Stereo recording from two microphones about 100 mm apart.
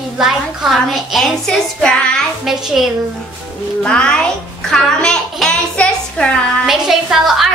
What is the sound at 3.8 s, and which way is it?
Speech, 10° left (ahead or behind).